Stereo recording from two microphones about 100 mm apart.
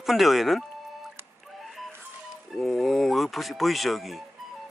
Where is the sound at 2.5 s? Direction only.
Centre (ahead or behind).